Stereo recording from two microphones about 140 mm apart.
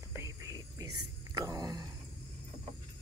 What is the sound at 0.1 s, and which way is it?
Whispering, 20° right (ahead or behind).